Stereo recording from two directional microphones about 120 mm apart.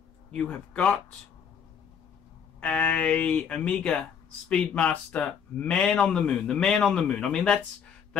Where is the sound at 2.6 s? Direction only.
10° left (ahead or behind).